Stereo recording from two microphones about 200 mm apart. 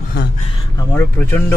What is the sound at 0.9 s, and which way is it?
Speech, 10° left (ahead or behind).